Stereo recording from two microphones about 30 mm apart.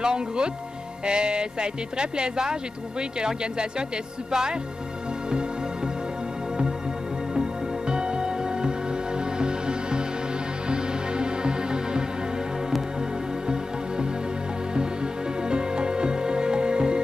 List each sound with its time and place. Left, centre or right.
0.0 s speech: right
7.3 s music: right
15.4 s music: right